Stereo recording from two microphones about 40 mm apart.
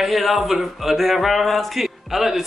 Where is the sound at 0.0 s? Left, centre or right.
Centre.